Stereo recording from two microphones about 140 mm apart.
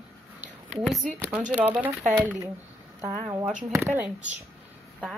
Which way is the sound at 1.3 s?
10° right (ahead or behind).